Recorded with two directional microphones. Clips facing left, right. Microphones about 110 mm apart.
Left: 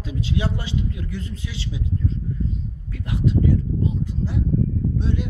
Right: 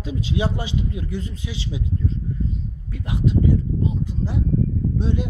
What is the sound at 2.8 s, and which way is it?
Speech, 20° right (ahead or behind).